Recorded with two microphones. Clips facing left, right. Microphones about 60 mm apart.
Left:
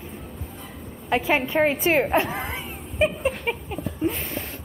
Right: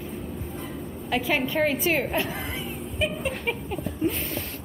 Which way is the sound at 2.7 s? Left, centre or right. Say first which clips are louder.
Left 7 dB; left.